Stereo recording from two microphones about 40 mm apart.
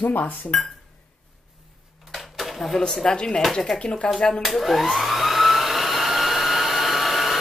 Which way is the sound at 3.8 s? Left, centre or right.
Left.